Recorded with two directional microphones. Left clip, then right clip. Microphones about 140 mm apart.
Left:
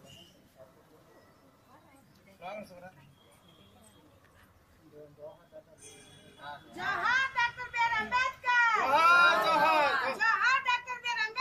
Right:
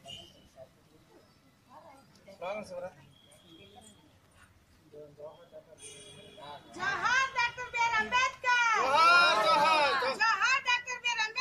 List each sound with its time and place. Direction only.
2.4 s speech: 20° right (ahead or behind)
6.8 s child singing: 5° right (ahead or behind)
8.8 s a sound: 25° right (ahead or behind)
10.1 s children playing: 5° right (ahead or behind)